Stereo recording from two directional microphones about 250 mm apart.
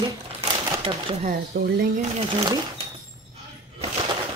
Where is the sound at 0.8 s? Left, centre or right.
Right.